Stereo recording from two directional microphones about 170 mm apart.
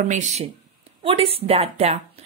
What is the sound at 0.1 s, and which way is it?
Speech, 45° right (ahead or behind).